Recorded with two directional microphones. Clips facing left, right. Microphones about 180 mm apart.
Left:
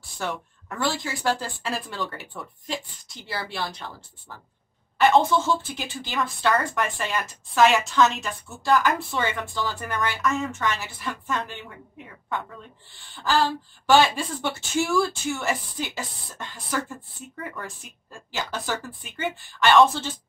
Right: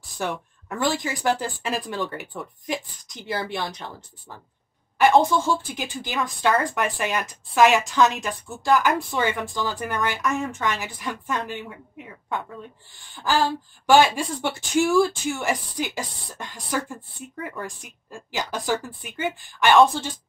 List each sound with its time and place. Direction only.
0.2 s a woman's voice: 15° right (ahead or behind)
4.9 s a woman's voice: 15° right (ahead or behind)
13.1 s a woman's voice: 15° right (ahead or behind)